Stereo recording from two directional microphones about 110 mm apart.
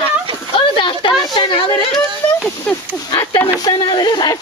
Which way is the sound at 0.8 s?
50° left (ahead or behind).